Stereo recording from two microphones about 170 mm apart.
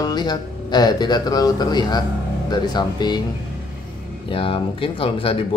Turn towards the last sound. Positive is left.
turn(degrees=30)  # may be behind; listen again after turning